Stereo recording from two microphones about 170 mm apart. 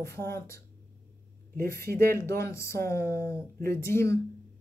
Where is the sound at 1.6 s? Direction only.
15° left (ahead or behind).